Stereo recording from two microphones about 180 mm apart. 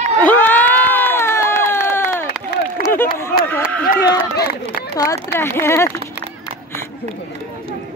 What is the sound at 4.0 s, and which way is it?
Run, 65° left (ahead or behind).